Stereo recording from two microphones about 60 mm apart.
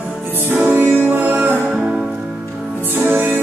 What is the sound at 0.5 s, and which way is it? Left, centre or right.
Music, right.